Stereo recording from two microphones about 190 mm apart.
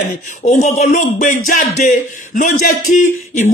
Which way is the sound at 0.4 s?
40° left (ahead or behind).